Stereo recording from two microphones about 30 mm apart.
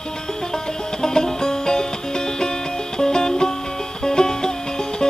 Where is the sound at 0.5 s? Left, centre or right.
Left.